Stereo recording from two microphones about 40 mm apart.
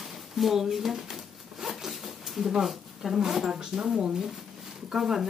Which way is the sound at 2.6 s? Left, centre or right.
Centre.